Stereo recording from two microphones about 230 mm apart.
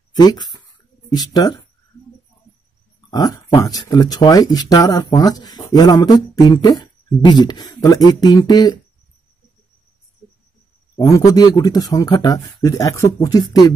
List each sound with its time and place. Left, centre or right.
0.2 s speech: centre
3.1 s speech: centre
11.0 s speech: centre